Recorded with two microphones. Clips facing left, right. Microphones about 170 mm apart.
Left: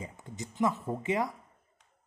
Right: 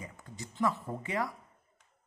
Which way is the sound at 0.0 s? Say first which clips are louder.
Left 4 dB; 20° left (ahead or behind).